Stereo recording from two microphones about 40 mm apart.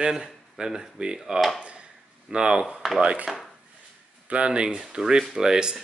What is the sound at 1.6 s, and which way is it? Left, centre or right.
Speech, right.